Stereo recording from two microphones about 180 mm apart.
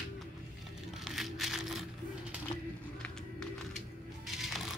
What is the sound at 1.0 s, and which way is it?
Music, centre (ahead or behind).